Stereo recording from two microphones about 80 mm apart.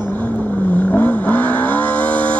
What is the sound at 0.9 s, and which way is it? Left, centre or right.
Vehicle, left.